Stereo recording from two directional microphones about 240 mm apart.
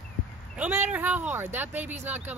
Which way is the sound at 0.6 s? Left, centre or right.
Centre.